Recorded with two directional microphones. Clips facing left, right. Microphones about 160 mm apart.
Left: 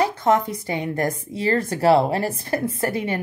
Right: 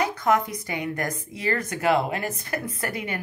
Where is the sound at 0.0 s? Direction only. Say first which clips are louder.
Left 3 dB; 25° left (ahead or behind).